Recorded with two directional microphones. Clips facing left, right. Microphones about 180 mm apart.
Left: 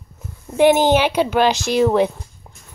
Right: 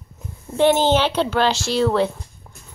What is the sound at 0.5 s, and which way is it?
A woman's voice, 15° left (ahead or behind).